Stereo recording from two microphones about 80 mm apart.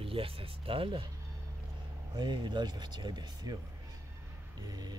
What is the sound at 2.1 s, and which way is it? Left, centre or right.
Speech, right.